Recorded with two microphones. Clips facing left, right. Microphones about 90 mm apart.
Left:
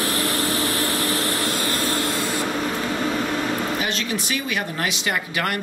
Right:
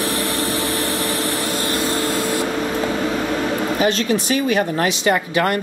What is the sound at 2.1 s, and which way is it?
Spray, 50° right (ahead or behind).